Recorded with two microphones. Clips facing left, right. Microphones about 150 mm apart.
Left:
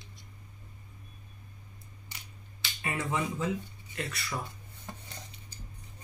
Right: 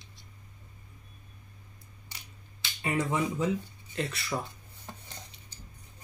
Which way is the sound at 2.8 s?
20° right (ahead or behind).